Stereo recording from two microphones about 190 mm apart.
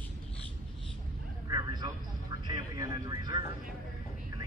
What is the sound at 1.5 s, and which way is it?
Vehicle, 20° right (ahead or behind).